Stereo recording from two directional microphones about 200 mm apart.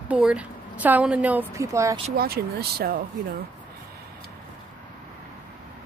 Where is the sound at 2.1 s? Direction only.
50° right (ahead or behind).